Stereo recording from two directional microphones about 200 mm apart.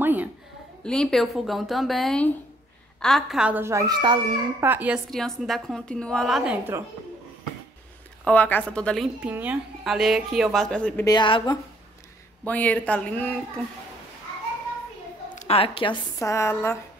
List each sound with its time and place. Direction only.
0.0 s a sound: 10° right (ahead or behind)
0.8 s a woman's voice: centre (ahead or behind); by 4.6 s 20° right (ahead or behind)
4.6 s a woman's voice: 10° right (ahead or behind)
8.2 s a woman's voice: 5° left (ahead or behind)
11.1 s speech: 25° left (ahead or behind)
12.4 s speech: 10° left (ahead or behind)
15.3 s speech: 30° left (ahead or behind); by 16.7 s 15° left (ahead or behind)